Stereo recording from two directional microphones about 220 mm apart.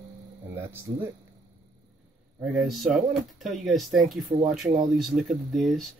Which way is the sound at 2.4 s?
Centre (ahead or behind).